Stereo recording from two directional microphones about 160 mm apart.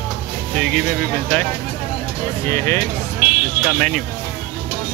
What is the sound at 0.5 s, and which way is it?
Speech, centre (ahead or behind).